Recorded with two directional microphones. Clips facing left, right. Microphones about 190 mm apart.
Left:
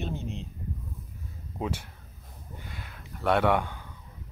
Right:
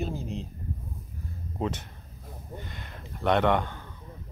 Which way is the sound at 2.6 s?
5° left (ahead or behind).